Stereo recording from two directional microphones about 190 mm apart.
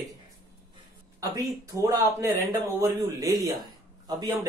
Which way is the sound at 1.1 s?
15° right (ahead or behind).